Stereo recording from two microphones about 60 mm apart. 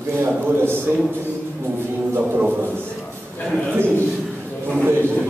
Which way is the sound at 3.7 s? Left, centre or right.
Right.